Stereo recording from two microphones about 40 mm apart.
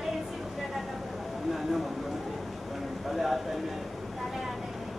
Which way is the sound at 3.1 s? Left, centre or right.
Centre.